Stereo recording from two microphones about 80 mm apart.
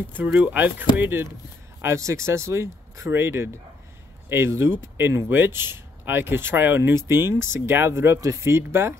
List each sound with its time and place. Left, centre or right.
0.1 s speech: right
1.8 s speech: right